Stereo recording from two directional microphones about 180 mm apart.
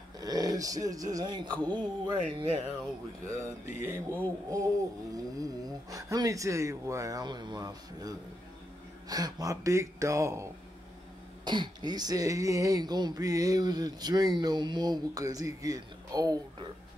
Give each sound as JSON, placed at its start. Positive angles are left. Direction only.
{"t": 0.2, "sound": "speech", "side_deg": -20}
{"t": 3.3, "sound": "speech", "side_deg": -15}